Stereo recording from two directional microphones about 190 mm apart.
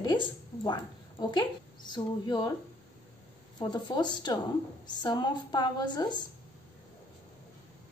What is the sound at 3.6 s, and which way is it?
A woman's voice, 25° left (ahead or behind).